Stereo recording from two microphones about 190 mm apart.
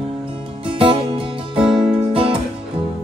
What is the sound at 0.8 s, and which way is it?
Music, 30° right (ahead or behind).